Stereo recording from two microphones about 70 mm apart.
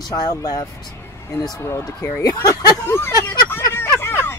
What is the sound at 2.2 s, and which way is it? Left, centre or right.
Speech, left.